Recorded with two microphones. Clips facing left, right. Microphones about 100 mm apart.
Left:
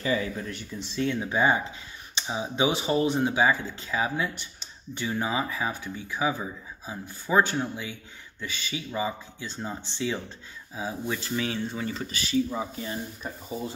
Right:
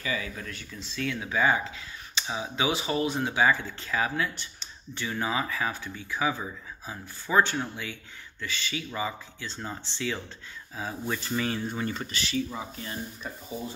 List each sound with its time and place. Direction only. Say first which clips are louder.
0.0 s speech: left 5 dB; 30° left (ahead or behind)
3.2 s speech: left 1 dB; 15° left (ahead or behind)
10.8 s speech: left 1 dB; 5° left (ahead or behind)